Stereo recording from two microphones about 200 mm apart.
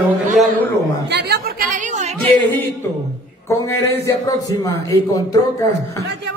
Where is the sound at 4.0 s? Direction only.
15° left (ahead or behind).